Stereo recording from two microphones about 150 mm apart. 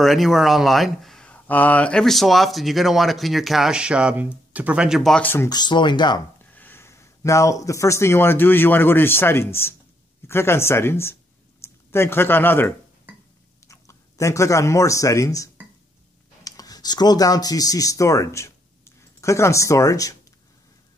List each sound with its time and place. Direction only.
0.0 s speech: centre (ahead or behind)
5.5 s speech: 30° left (ahead or behind)
6.5 s speech: 10° left (ahead or behind)